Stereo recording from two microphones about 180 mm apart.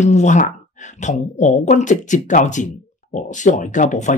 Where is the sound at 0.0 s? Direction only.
40° left (ahead or behind).